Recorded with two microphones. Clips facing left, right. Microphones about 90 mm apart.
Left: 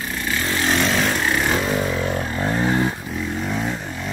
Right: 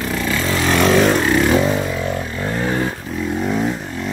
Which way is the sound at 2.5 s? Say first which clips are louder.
Even; 5° left (ahead or behind).